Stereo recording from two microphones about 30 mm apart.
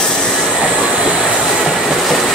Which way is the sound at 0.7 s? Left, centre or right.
Right.